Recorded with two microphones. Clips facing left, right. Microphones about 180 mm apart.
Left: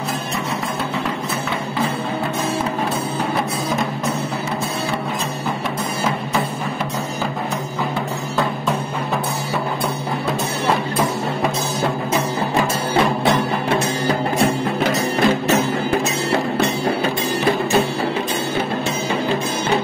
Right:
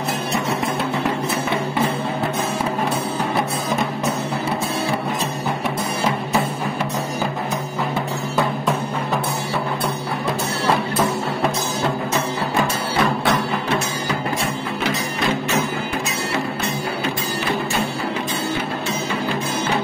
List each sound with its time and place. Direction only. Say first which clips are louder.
14.4 s music: left 6 dB; 50° left (ahead or behind)